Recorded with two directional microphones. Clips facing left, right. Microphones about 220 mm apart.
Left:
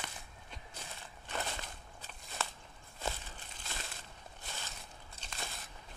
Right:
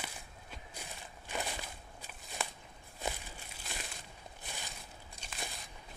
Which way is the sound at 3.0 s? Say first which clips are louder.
Right 1 dB; 10° right (ahead or behind).